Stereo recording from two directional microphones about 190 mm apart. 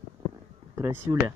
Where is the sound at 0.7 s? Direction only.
15° right (ahead or behind).